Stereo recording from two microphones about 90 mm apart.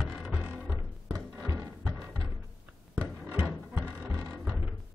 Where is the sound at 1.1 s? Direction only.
40° right (ahead or behind).